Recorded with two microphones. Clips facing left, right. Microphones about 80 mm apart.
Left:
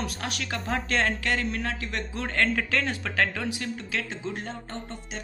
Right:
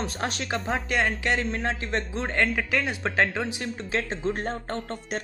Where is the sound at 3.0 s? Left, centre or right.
Right.